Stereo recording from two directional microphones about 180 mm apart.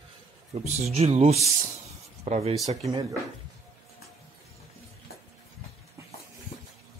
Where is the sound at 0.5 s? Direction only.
40° right (ahead or behind).